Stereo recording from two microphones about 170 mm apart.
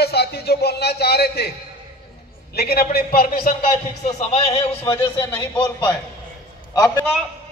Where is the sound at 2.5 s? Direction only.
65° left (ahead or behind).